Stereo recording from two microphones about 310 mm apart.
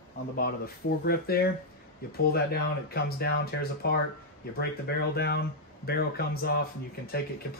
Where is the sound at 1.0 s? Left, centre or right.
Left.